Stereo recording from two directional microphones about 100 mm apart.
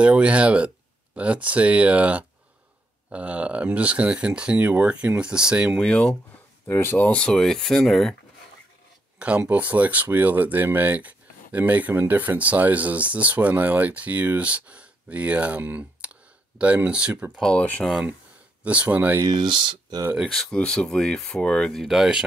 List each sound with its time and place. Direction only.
0.0 s speech: 10° right (ahead or behind)
5.8 s speech: 5° left (ahead or behind)
6.7 s speech: 25° left (ahead or behind); by 8.2 s 5° left (ahead or behind)
9.4 s speech: 15° right (ahead or behind)
17.4 s speech: 10° left (ahead or behind)
18.6 s speech: 15° right (ahead or behind)
19.2 s speech: 45° right (ahead or behind)
20.2 s speech: 5° left (ahead or behind)